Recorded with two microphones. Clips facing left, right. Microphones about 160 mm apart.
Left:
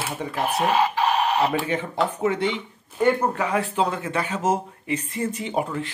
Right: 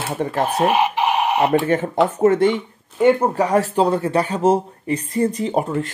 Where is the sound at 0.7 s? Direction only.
20° right (ahead or behind).